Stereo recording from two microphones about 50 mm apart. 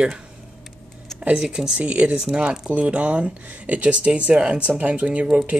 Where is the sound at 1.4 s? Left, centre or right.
Centre.